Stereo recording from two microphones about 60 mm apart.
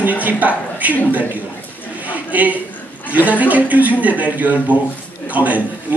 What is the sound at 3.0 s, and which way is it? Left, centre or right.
A man's voice, right.